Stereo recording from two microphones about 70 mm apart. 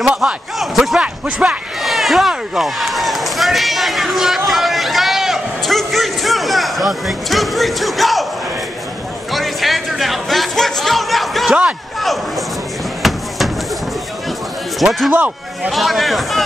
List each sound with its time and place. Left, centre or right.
0.2 s a man's voice: centre
0.9 s speech: centre
1.8 s run: centre
9.3 s music: centre
13.0 s a sound: centre
14.8 s a man's voice: centre
15.1 s a man's voice: right
15.7 s a man's voice: centre